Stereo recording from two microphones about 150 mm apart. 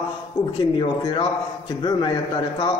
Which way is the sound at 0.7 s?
30° left (ahead or behind).